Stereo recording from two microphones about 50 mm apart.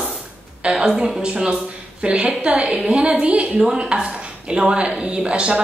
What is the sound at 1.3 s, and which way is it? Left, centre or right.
A woman's voice, right.